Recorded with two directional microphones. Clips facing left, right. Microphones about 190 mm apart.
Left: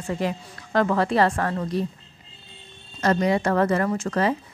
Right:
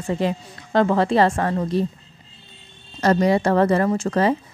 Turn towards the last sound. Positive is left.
turn(degrees=-30)  # may be behind; listen again after turning